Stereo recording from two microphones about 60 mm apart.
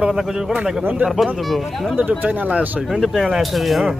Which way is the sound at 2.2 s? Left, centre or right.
Right.